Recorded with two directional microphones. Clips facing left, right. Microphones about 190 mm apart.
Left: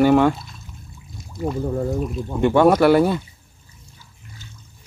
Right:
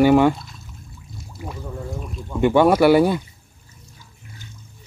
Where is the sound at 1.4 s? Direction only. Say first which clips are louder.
Left 10 dB; 15° right (ahead or behind).